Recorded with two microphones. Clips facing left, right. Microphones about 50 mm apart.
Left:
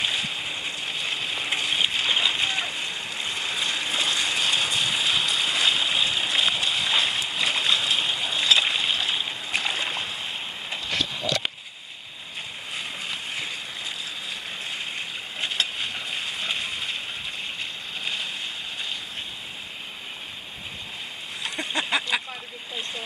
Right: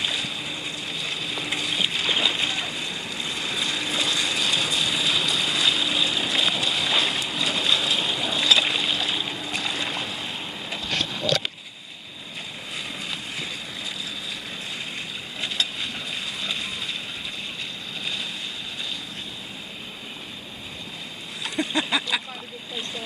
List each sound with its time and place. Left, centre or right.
0.0 s boat: left
7.3 s a sound: left
9.5 s boat: left
9.8 s boat: centre
12.7 s boat: centre
15.4 s boat: left
21.7 s a sound: left